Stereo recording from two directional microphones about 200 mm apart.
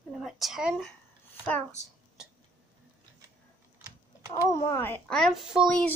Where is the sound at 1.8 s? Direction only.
35° left (ahead or behind).